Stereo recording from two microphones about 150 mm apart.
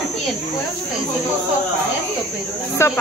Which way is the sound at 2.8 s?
20° left (ahead or behind).